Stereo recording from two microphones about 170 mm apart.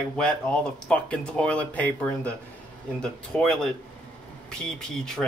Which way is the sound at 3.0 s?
5° left (ahead or behind).